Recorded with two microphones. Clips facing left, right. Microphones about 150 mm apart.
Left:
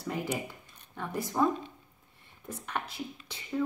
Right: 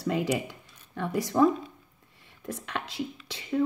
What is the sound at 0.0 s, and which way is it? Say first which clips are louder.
Speech: right 6 dB; 75° right (ahead or behind).